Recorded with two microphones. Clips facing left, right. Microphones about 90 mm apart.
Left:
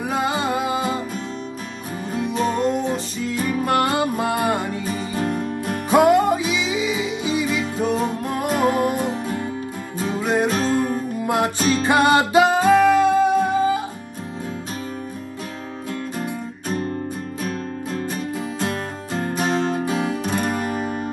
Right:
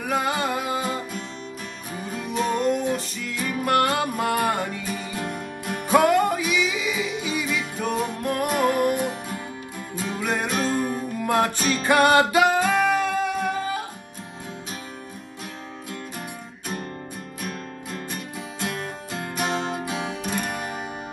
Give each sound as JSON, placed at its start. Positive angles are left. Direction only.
{"t": 0.1, "sound": "music", "side_deg": 20}
{"t": 2.1, "sound": "music", "side_deg": 30}
{"t": 5.1, "sound": "music", "side_deg": 35}
{"t": 5.9, "sound": "music", "side_deg": 20}
{"t": 11.2, "sound": "music", "side_deg": 20}
{"t": 18.6, "sound": "music", "side_deg": 40}